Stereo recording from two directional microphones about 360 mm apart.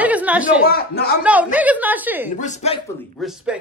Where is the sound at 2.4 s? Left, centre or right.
Centre.